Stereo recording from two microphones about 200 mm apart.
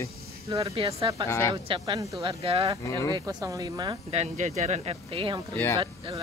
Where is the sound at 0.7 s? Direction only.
30° right (ahead or behind).